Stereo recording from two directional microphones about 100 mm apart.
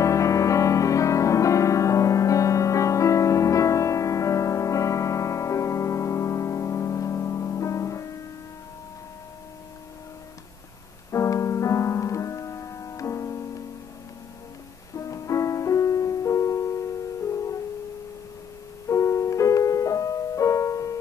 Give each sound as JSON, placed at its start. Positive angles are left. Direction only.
{"t": 0.0, "sound": "music", "side_deg": 30}
{"t": 11.1, "sound": "music", "side_deg": 30}
{"t": 15.0, "sound": "music", "side_deg": 30}
{"t": 18.9, "sound": "music", "side_deg": 30}